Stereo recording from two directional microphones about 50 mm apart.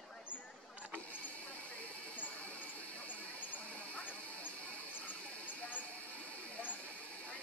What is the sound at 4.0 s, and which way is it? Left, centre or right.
Music, left.